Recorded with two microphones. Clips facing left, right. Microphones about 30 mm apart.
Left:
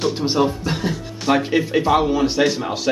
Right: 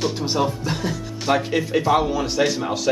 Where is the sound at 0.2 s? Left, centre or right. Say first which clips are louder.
Left 3 dB; centre.